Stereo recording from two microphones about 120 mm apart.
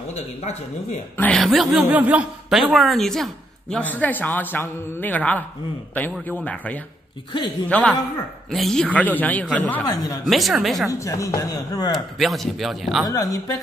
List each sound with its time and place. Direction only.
0.1 s speech: 65° left (ahead or behind)
1.1 s a woman's voice: 15° left (ahead or behind)
1.4 s a man's voice: centre (ahead or behind)
1.9 s speech: 10° right (ahead or behind)
2.7 s a woman's voice: centre (ahead or behind)
9.8 s a woman's voice: 30° left (ahead or behind)
10.2 s a man's voice: centre (ahead or behind)
10.9 s speech: 25° left (ahead or behind)
11.9 s a man's voice: centre (ahead or behind)
13.1 s speech: 30° left (ahead or behind)